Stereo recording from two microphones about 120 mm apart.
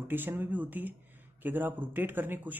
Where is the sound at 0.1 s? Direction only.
15° right (ahead or behind).